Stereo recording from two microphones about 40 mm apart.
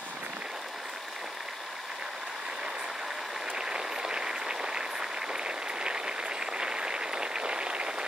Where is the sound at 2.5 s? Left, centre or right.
Right.